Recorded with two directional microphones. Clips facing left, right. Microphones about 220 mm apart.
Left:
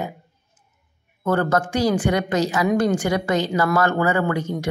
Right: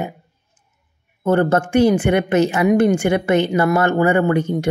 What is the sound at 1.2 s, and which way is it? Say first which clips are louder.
Speech: right 4 dB; 25° right (ahead or behind).